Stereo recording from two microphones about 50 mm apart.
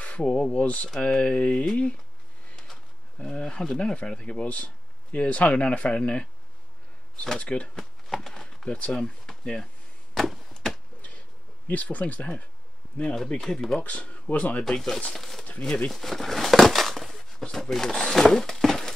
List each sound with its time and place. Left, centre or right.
0.0 s a sound: left
0.3 s speech: left
7.2 s speech: left
7.7 s a sound: centre
9.4 s speech: centre
10.1 s chop: centre
10.5 s a sound: centre
11.6 s speech: left
13.1 s speech: centre
13.7 s speech: left
14.6 s speech: centre
15.6 s speech: centre
15.9 s a sound: centre
17.4 s speech: centre